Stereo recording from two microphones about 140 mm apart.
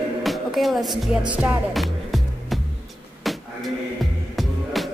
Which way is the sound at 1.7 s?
Centre (ahead or behind).